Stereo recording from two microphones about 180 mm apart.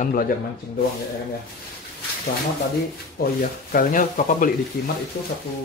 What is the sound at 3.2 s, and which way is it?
Speech, 50° left (ahead or behind).